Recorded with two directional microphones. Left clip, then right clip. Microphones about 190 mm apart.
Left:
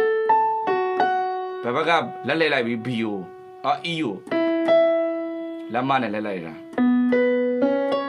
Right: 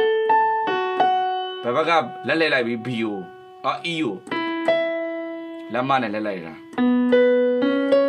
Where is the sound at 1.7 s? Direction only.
10° left (ahead or behind).